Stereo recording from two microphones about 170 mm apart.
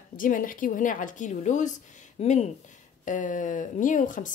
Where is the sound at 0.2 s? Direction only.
50° left (ahead or behind).